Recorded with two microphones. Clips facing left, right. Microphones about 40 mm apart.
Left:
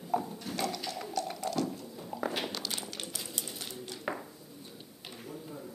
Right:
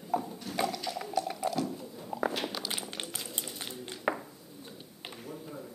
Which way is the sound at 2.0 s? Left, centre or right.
Centre.